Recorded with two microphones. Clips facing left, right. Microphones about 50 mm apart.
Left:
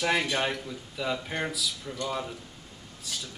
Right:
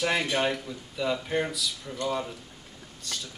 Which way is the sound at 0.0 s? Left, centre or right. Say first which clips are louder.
Right 1 dB; centre.